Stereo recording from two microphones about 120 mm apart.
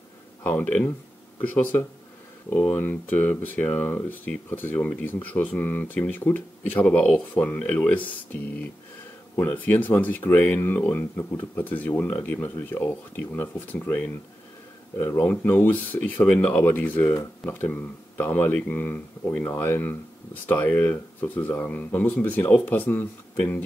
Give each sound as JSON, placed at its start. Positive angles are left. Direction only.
{"t": 0.4, "sound": "speech", "side_deg": 15}